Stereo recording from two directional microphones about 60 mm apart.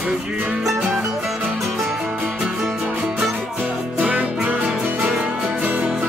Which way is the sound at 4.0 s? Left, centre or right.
Right.